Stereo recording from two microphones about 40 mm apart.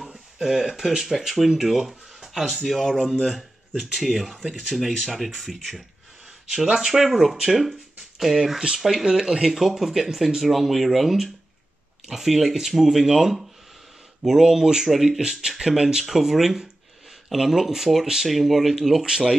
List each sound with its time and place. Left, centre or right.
0.0 s speech: centre
6.5 s speech: centre
9.0 s speech: right